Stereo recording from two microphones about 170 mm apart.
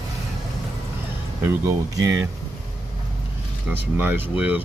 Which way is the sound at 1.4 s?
15° right (ahead or behind).